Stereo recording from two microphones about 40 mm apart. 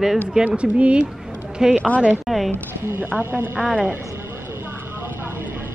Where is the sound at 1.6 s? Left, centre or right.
Centre.